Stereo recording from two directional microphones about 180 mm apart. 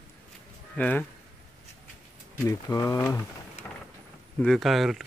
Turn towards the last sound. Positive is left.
turn(degrees=0)  # may be behind; listen again after turning